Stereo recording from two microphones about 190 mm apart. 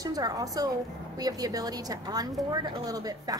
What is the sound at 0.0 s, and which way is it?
A woman's voice, 20° right (ahead or behind).